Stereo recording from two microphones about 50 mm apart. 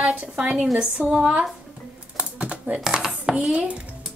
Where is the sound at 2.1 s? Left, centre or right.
Right.